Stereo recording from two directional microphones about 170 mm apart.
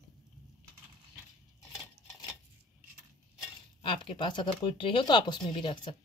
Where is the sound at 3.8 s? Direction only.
30° left (ahead or behind).